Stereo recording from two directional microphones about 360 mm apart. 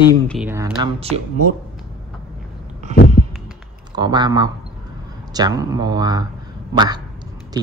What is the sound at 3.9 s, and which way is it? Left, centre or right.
Speech, centre.